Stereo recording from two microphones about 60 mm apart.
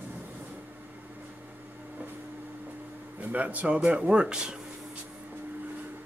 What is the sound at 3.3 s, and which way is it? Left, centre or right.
Speech, right.